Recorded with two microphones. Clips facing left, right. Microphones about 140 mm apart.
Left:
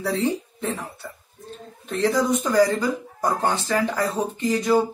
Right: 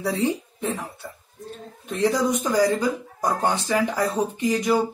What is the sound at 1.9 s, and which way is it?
A man's voice, 15° right (ahead or behind).